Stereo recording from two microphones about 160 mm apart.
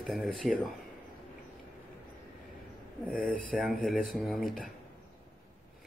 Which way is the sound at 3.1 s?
55° left (ahead or behind).